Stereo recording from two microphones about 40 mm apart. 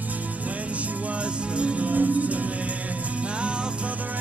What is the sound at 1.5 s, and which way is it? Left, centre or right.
Music, right.